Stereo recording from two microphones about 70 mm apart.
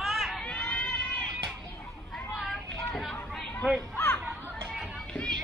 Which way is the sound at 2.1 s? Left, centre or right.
Centre.